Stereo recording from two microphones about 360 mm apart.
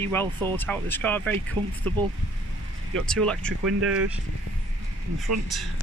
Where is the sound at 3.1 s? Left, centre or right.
Centre.